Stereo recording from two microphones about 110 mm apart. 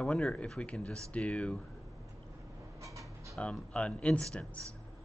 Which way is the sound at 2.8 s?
30° right (ahead or behind).